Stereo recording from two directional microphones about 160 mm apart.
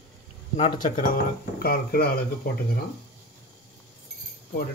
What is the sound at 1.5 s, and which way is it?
Speech, 70° left (ahead or behind).